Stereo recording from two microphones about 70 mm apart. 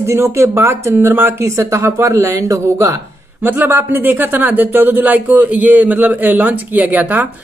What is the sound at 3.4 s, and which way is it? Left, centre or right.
Speech, right.